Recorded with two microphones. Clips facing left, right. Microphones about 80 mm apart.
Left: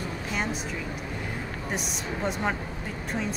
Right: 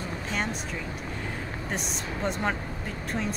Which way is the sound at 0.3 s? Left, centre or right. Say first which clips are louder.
Even; centre.